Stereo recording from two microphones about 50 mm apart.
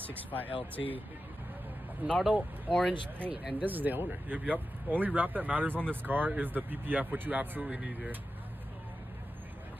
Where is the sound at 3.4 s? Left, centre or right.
Centre.